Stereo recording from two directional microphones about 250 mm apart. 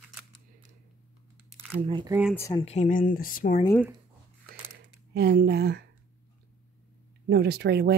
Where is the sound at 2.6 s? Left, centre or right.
Left.